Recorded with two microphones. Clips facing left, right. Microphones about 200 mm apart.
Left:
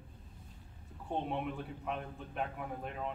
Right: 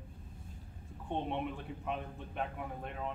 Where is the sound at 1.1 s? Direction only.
Centre (ahead or behind).